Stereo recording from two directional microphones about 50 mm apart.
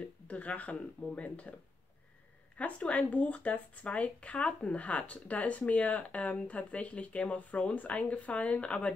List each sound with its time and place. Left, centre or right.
0.0 s speech: left
2.5 s speech: left